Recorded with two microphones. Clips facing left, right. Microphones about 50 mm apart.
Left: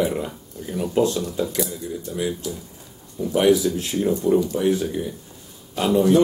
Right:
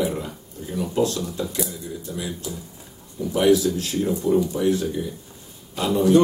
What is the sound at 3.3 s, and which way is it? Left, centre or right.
Speech, left.